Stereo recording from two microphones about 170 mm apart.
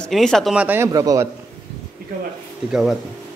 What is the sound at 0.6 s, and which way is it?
Speech, 15° right (ahead or behind).